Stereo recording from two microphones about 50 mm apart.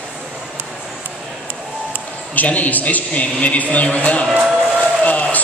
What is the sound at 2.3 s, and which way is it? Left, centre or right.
A man's voice, left.